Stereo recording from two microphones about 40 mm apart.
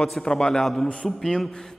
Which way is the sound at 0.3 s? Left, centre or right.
Centre.